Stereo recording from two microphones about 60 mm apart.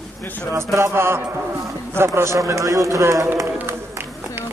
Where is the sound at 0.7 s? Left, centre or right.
Right.